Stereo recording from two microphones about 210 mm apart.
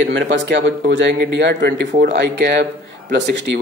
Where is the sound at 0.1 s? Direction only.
60° right (ahead or behind).